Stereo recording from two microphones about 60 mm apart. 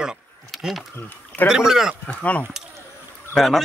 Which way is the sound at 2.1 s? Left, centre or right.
Left.